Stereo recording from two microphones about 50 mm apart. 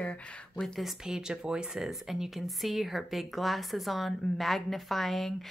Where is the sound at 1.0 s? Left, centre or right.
Centre.